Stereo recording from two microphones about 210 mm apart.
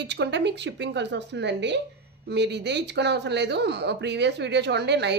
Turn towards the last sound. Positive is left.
turn(degrees=-55)  # may be behind; listen again after turning